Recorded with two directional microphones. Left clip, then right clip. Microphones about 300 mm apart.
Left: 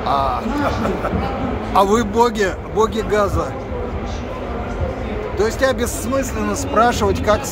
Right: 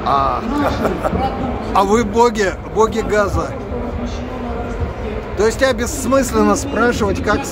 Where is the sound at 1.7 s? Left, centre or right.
Centre.